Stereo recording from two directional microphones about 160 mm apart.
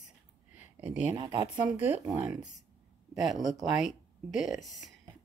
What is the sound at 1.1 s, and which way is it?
Speech, 25° right (ahead or behind).